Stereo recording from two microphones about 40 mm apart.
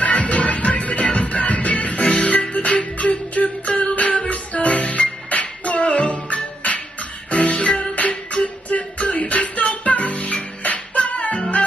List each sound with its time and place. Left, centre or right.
0.0 s music: left